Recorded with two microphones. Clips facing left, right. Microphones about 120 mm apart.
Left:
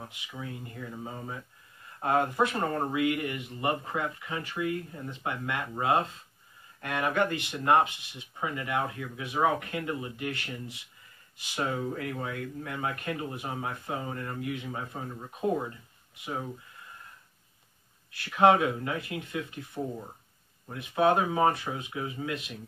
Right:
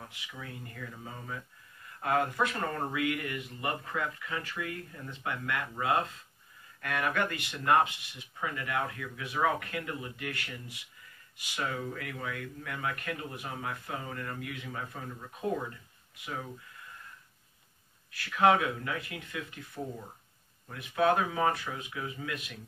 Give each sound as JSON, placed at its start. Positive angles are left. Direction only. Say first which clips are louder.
{"t": 0.0, "sound": "speech", "louder": "left 4 dB", "side_deg": 25}
{"t": 18.1, "sound": "speech", "louder": "left 3 dB", "side_deg": 25}